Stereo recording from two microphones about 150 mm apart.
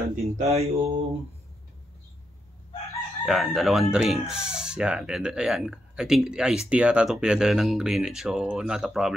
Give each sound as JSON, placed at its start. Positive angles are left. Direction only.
{"t": 0.1, "sound": "speech", "side_deg": -45}
{"t": 3.3, "sound": "speech", "side_deg": 0}